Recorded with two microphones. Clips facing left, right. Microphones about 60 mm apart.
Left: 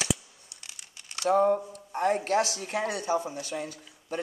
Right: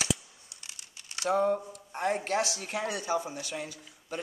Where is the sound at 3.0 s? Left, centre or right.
Centre.